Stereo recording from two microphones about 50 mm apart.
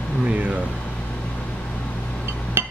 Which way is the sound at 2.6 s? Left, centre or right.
Right.